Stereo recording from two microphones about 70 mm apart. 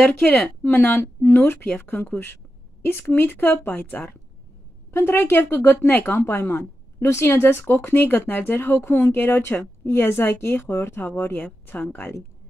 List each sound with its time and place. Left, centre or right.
0.0 s speech: left